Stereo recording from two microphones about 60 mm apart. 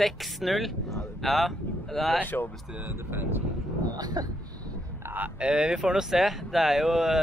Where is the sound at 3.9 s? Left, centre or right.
Right.